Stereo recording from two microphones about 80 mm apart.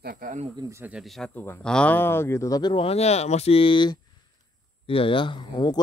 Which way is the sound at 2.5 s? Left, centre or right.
Left.